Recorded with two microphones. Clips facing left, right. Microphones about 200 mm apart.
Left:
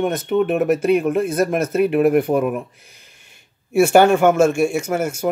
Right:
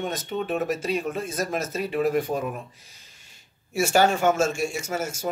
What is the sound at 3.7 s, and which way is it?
Speech, 60° left (ahead or behind).